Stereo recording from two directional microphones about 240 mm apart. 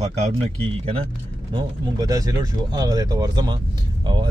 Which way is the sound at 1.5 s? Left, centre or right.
Centre.